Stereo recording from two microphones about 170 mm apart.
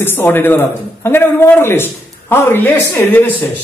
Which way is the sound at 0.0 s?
10° left (ahead or behind).